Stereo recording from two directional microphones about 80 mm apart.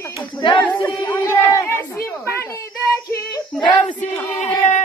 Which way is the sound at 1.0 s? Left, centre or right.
Left.